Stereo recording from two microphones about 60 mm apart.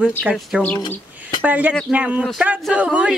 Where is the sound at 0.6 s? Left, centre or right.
Left.